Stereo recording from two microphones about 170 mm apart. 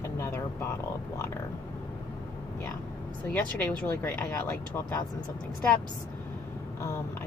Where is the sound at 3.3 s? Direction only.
10° left (ahead or behind).